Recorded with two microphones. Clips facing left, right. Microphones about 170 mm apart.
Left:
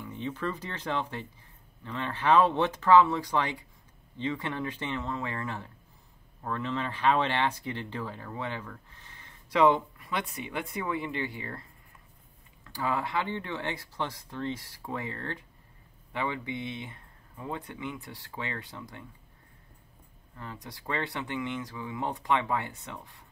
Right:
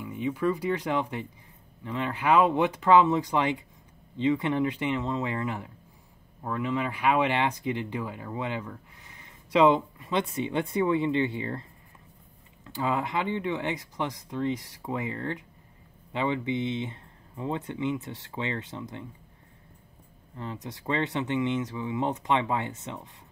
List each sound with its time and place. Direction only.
0.0 s speech: 10° right (ahead or behind)
12.6 s speech: 20° right (ahead or behind)
20.3 s speech: 20° right (ahead or behind)